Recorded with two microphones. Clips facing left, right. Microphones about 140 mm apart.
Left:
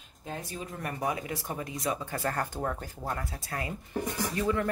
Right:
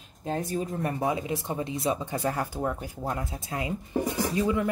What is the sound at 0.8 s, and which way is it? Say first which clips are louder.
Speech: right 1 dB; 25° right (ahead or behind).